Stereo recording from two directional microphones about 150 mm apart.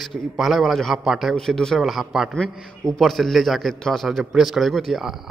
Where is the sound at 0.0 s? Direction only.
Centre (ahead or behind).